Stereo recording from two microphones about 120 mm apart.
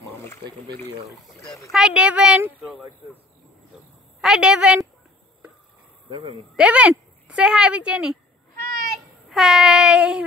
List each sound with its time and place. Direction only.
1.7 s speech: 5° right (ahead or behind)
2.5 s speech: 15° left (ahead or behind)
4.2 s a woman's voice: 5° right (ahead or behind)
6.5 s speech: 10° right (ahead or behind)
9.3 s child singing: 5° right (ahead or behind)